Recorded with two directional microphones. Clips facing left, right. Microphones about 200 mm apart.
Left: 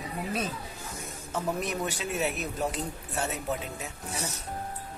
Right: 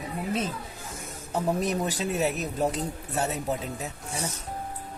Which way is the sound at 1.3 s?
35° right (ahead or behind).